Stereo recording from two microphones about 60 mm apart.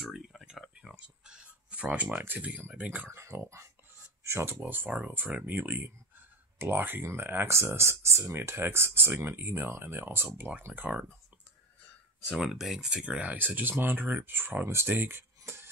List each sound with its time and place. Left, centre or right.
0.0 s a sound: centre
0.9 s a sound: centre
2.7 s speech: right
3.1 s speech: right
4.6 s speech: right
7.5 s speech: right
12.4 s speech: centre
13.0 s speech: right